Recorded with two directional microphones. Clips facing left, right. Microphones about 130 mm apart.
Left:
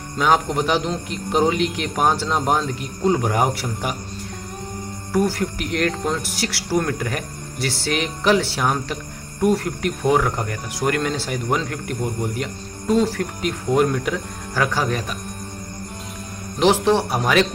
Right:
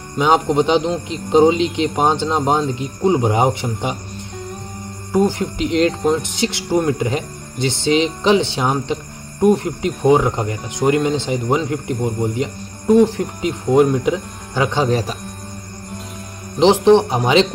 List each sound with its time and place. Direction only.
0.2 s speech: 20° right (ahead or behind)
5.1 s speech: 20° right (ahead or behind)
16.5 s speech: 20° right (ahead or behind)